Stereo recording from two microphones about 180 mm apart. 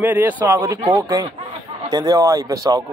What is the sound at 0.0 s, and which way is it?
A man's voice, 10° right (ahead or behind).